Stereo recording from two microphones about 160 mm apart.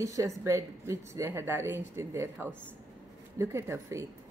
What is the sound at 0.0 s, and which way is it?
A woman's voice, 20° right (ahead or behind).